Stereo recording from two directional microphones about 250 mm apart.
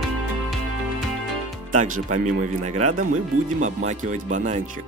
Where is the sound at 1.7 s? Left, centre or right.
Right.